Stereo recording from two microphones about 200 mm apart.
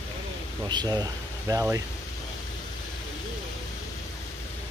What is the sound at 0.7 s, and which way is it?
Speech, 20° right (ahead or behind).